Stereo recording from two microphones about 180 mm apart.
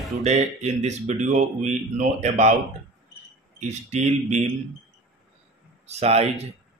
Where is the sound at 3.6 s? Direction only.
40° right (ahead or behind).